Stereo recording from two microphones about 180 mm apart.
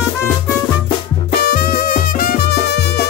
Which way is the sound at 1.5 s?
50° left (ahead or behind).